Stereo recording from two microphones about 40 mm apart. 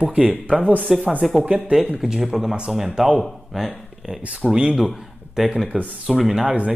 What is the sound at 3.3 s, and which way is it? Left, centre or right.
Speech, centre.